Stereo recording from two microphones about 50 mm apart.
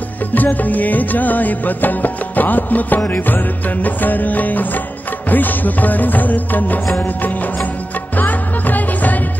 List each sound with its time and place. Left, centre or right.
0.3 s music: left